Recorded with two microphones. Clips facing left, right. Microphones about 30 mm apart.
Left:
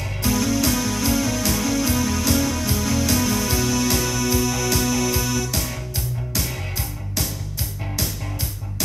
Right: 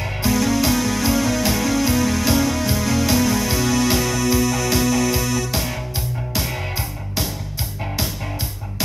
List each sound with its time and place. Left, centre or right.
0.3 s music: centre
5.5 s music: centre